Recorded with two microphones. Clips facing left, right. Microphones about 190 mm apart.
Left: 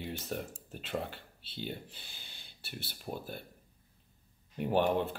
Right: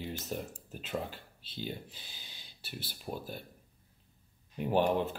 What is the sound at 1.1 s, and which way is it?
Speech, 55° left (ahead or behind).